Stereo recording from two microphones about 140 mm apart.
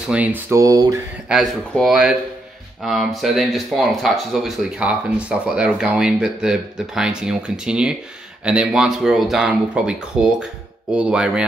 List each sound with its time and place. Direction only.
0.1 s speech: 10° right (ahead or behind)
1.3 s speech: centre (ahead or behind)